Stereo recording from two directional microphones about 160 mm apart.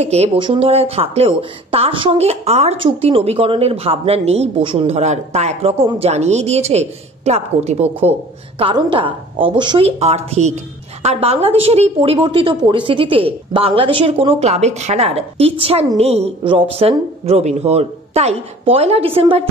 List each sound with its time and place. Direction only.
0.0 s a woman's voice: 40° right (ahead or behind)